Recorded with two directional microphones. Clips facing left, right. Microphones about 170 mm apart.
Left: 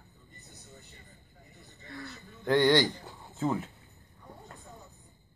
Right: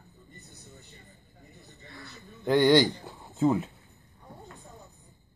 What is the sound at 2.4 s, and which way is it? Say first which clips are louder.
A man's voice: right 3 dB; 10° right (ahead or behind).